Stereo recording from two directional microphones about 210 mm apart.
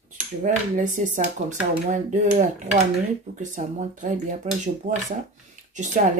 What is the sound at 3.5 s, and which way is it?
Speech, 40° right (ahead or behind).